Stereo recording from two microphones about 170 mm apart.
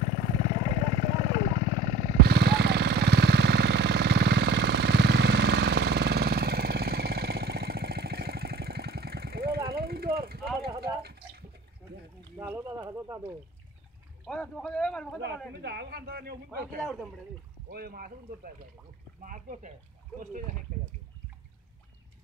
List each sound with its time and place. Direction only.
0.0 s vehicle: 40° right (ahead or behind)
2.2 s vehicle: 75° right (ahead or behind)
10.8 s a sound: 65° right (ahead or behind)
12.4 s a sound: 15° right (ahead or behind)
14.2 s speech: 5° left (ahead or behind)
15.5 s speech: 75° right (ahead or behind)
17.6 s speech: 65° right (ahead or behind)
19.2 s speech: 50° right (ahead or behind)